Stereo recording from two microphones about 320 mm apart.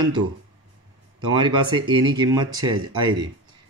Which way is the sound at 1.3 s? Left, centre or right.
Centre.